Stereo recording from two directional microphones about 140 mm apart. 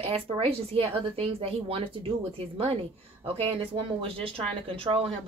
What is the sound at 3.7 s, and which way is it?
Speech, 40° right (ahead or behind).